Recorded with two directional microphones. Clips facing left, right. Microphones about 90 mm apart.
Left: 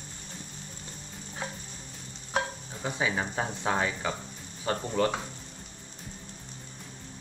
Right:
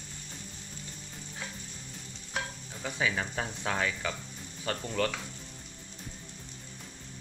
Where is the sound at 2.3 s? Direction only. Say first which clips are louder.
Left 6 dB; 30° left (ahead or behind).